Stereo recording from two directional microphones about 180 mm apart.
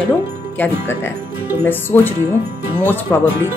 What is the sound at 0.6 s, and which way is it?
Speech, 10° left (ahead or behind).